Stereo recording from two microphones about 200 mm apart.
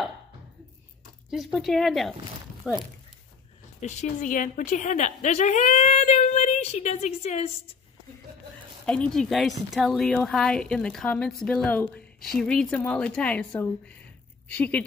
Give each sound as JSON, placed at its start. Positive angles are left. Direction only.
{"t": 1.3, "sound": "a woman's voice", "side_deg": 0}
{"t": 3.8, "sound": "a woman's voice", "side_deg": 35}
{"t": 8.8, "sound": "a woman's voice", "side_deg": 5}